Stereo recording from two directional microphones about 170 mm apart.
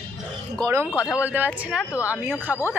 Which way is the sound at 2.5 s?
5° right (ahead or behind).